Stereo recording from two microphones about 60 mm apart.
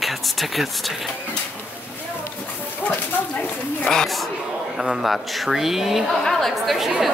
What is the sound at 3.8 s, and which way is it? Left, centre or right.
A woman's voice, centre.